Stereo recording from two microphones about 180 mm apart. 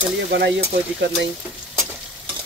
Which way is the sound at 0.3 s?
75° right (ahead or behind).